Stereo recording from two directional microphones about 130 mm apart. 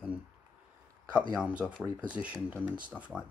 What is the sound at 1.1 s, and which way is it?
Speech, 10° right (ahead or behind).